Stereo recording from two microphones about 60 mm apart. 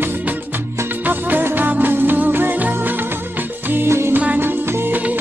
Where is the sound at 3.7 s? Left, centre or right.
Right.